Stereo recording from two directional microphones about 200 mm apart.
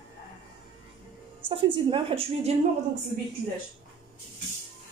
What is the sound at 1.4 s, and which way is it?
A woman's voice, 25° right (ahead or behind).